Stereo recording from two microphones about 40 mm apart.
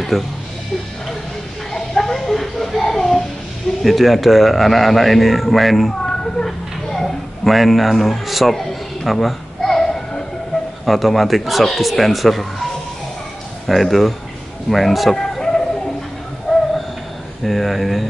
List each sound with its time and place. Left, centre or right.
0.1 s a man's voice: centre
1.7 s a sound: centre
3.8 s a man's voice: centre
6.0 s a sound: centre
9.0 s babbling: centre
10.9 s a man's voice: centre
13.7 s a man's voice: centre
15.1 s a sound: centre
17.4 s a man's voice: centre